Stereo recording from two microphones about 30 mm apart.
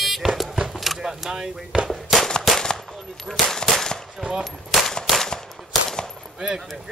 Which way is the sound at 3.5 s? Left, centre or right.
Centre.